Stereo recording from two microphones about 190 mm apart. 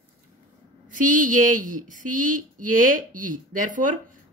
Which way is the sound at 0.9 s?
45° right (ahead or behind).